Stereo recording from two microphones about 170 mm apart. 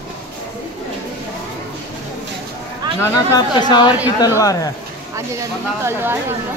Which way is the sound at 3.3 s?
25° left (ahead or behind).